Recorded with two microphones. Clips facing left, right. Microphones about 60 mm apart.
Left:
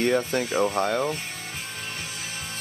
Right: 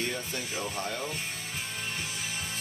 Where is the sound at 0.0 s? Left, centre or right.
Left.